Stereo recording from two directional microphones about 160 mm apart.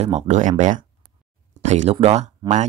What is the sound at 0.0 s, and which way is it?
Speech, 45° right (ahead or behind).